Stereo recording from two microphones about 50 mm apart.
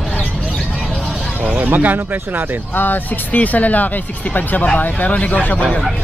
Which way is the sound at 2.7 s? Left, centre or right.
Left.